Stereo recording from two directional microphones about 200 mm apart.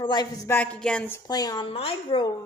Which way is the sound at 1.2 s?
20° left (ahead or behind).